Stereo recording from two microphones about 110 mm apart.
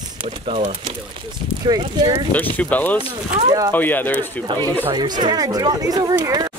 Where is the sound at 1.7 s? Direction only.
35° right (ahead or behind).